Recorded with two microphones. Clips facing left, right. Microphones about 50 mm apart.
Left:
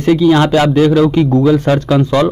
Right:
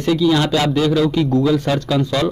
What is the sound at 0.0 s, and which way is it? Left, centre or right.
A man's voice, left.